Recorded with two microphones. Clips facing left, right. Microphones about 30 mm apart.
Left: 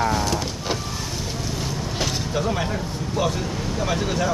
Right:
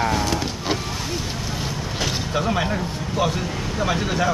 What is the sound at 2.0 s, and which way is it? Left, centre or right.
Speech, centre.